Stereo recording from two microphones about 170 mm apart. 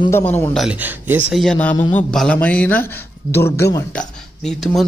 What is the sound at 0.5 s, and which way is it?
Speech, 5° right (ahead or behind).